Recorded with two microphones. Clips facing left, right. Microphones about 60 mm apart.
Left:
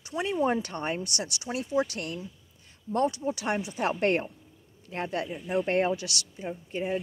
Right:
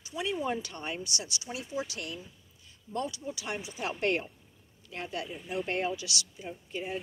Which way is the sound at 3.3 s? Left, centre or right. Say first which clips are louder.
Left 8 dB; left.